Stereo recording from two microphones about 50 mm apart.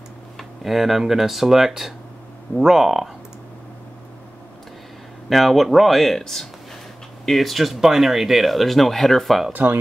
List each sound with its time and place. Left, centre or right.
0.4 s speech: centre
5.3 s speech: centre
9.5 s speech: right